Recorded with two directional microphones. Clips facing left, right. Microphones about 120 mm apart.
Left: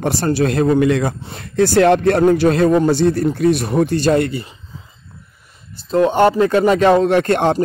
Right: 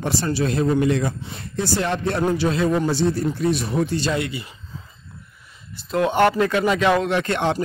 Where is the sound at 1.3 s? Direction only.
60° left (ahead or behind).